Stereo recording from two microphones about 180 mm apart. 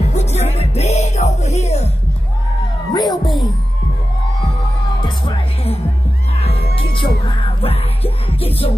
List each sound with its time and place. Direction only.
0.1 s music: 40° left (ahead or behind)
2.9 s music: 20° left (ahead or behind)
5.0 s music: 30° left (ahead or behind)